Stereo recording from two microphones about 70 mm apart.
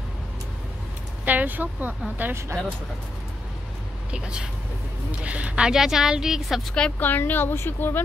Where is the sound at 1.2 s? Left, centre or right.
Right.